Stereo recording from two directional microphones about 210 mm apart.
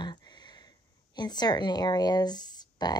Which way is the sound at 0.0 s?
20° left (ahead or behind).